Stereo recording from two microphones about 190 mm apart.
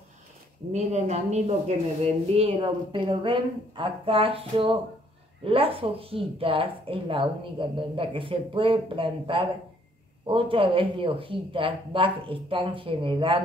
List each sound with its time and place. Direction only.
0.7 s a woman's voice: 35° right (ahead or behind)